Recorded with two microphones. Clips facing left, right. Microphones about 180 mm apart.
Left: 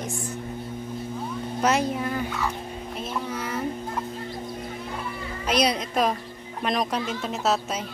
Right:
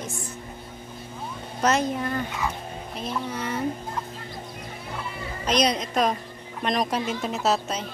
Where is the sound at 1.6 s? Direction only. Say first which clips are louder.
Right 1 dB; 10° left (ahead or behind).